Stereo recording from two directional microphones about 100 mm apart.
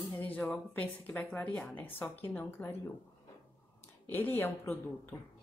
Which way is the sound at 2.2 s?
20° left (ahead or behind).